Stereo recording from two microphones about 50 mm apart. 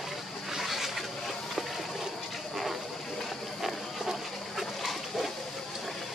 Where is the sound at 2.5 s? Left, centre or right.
Centre.